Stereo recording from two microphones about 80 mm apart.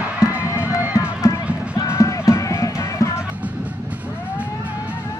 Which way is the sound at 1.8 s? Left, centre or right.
Left.